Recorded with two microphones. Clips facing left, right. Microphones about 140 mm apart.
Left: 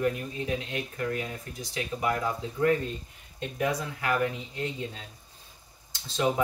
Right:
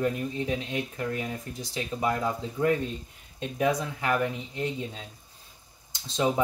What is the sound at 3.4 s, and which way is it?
Speech, 15° right (ahead or behind).